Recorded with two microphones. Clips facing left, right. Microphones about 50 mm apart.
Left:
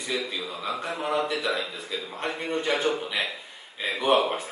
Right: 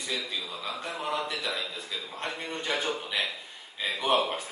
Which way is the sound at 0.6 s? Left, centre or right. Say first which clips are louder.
Left 4 dB; centre.